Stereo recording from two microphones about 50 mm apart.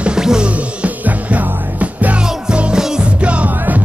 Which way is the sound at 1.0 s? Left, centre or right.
Right.